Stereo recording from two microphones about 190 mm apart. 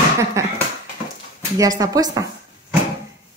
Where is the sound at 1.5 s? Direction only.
20° right (ahead or behind).